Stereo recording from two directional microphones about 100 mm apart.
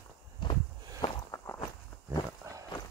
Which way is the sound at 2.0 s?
30° right (ahead or behind).